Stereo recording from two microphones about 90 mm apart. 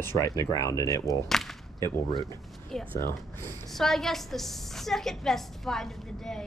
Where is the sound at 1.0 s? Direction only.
5° left (ahead or behind).